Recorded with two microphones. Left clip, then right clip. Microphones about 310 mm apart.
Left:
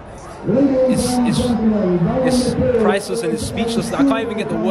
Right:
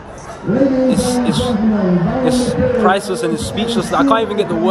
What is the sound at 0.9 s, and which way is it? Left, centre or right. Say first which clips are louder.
A man's voice: right 2 dB; centre.